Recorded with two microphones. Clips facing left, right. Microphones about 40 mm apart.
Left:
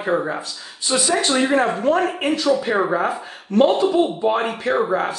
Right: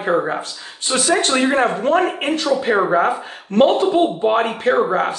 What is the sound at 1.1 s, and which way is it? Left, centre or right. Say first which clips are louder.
Speech: right 2 dB; right.